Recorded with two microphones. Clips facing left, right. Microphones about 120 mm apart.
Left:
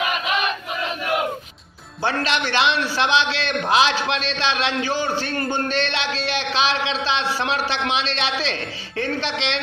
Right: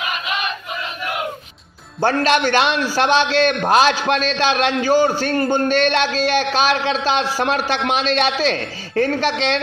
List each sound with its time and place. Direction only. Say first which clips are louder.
2.0 s a man's voice: right 6 dB; 45° right (ahead or behind)